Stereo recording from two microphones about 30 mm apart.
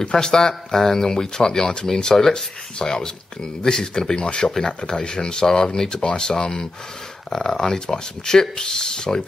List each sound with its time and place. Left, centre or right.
0.0 s speech: left
4.5 s speech: centre